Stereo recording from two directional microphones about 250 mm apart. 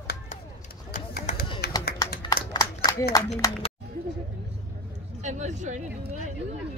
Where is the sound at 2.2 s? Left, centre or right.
Centre.